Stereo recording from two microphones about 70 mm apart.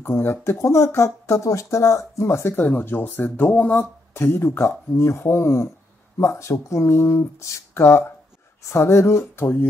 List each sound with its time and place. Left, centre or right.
0.0 s speech: left
2.6 s speech: left
4.1 s speech: left